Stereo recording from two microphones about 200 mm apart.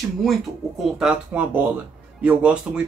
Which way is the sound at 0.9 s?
5° right (ahead or behind).